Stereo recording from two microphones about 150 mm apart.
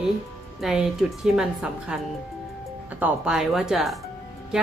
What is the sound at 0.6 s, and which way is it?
Speech, 5° right (ahead or behind).